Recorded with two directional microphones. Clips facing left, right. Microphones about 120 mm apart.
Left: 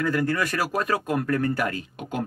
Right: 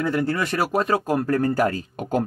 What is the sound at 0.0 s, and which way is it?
Speech, 25° right (ahead or behind).